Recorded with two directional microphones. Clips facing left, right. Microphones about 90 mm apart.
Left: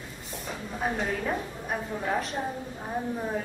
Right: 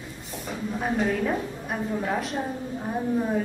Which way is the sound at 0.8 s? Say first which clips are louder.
Right 4 dB; centre (ahead or behind).